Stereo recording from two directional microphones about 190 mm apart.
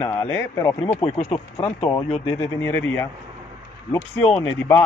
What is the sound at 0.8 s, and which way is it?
Speech, 30° left (ahead or behind).